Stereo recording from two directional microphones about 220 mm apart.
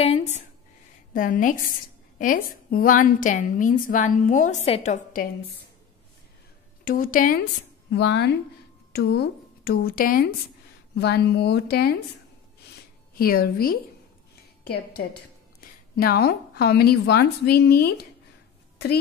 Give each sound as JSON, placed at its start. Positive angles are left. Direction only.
{"t": 0.0, "sound": "a woman's voice", "side_deg": 30}
{"t": 6.8, "sound": "a woman's voice", "side_deg": 40}
{"t": 7.9, "sound": "a woman's voice", "side_deg": 50}
{"t": 13.2, "sound": "a woman's voice", "side_deg": 40}